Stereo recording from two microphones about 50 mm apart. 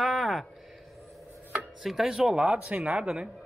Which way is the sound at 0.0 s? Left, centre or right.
Centre.